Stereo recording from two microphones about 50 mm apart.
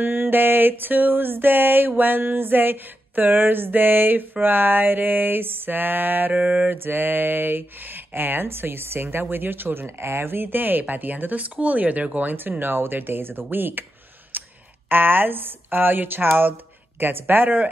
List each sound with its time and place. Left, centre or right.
0.0 s a sound: right
6.3 s mantra: right
6.7 s speech: right
9.8 s speech: right
14.3 s clicking: right
14.9 s a sound: right